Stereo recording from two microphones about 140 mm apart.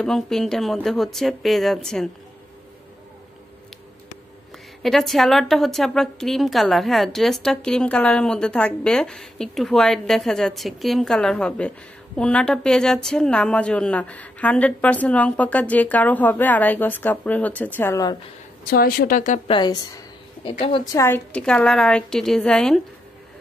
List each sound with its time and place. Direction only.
0.0 s a woman's voice: centre (ahead or behind)
4.8 s a woman's voice: centre (ahead or behind)
18.7 s a woman's voice: 90° left; by 19.4 s 65° left (ahead or behind)
19.4 s a woman's voice: 35° left (ahead or behind)
20.4 s a woman's voice: 40° left (ahead or behind)
20.8 s a woman's voice: 20° left (ahead or behind)
21.3 s a woman's voice: 5° left (ahead or behind)